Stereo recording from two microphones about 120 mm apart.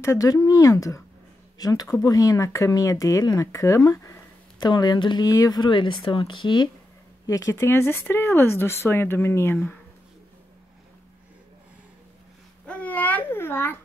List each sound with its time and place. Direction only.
0.0 s speech: 25° left (ahead or behind)
7.2 s speech: 25° left (ahead or behind)
12.6 s babbling: 10° left (ahead or behind)